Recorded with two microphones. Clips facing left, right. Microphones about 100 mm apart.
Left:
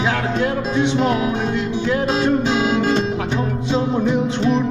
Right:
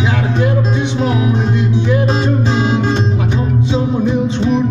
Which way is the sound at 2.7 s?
25° right (ahead or behind).